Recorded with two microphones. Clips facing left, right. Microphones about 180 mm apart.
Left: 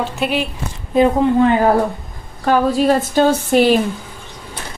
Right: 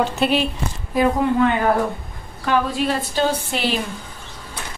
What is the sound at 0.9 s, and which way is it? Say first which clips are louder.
Speech: left 5 dB; 30° left (ahead or behind).